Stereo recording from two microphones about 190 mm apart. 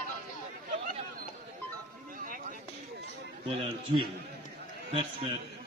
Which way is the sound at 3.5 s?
30° right (ahead or behind).